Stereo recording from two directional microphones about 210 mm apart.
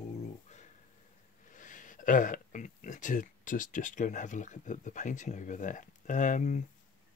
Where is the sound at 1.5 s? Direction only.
40° left (ahead or behind).